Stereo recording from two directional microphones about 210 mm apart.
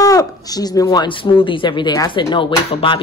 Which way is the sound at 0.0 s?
15° left (ahead or behind).